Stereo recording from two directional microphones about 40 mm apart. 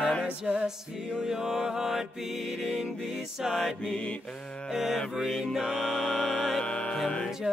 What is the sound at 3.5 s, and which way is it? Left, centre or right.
Music, centre.